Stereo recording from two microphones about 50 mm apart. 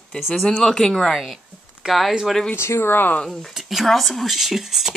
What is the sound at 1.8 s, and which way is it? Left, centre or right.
Speech, centre.